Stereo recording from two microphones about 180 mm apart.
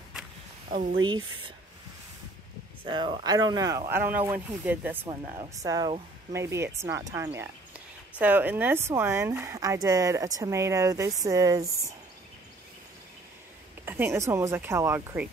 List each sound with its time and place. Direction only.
1.0 s speech: 25° right (ahead or behind)
2.8 s speech: 25° right (ahead or behind); by 5.1 s 10° right (ahead or behind)
5.6 s speech: 20° right (ahead or behind)
13.8 s speech: 10° right (ahead or behind)